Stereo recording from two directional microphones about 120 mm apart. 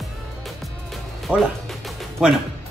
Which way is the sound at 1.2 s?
5° right (ahead or behind).